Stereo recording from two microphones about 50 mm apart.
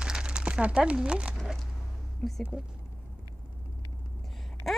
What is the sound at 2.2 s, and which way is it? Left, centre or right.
Speech, centre.